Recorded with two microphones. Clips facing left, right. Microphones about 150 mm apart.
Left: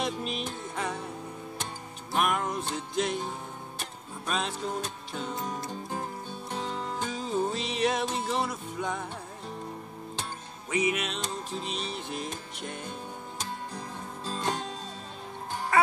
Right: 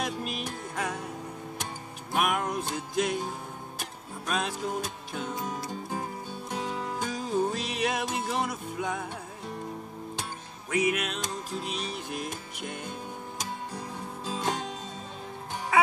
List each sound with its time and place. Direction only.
0.0 s music: 5° right (ahead or behind)
2.1 s music: 5° right (ahead or behind)
10.7 s music: 5° right (ahead or behind)